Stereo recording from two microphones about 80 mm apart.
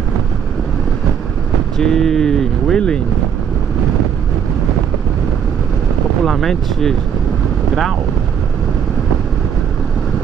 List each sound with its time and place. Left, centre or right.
1.8 s speech: centre
6.2 s speech: centre